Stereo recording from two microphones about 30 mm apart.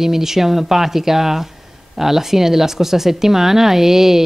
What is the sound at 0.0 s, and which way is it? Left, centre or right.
Speech, centre.